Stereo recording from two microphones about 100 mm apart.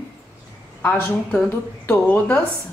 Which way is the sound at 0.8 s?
15° left (ahead or behind).